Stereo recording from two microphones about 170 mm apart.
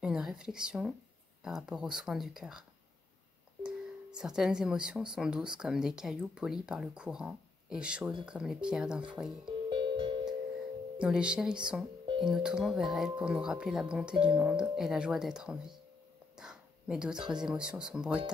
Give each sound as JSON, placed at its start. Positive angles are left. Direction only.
{"t": 0.0, "sound": "speech", "side_deg": -5}
{"t": 3.6, "sound": "speech", "side_deg": -5}
{"t": 9.7, "sound": "music", "side_deg": -30}
{"t": 11.0, "sound": "speech", "side_deg": -5}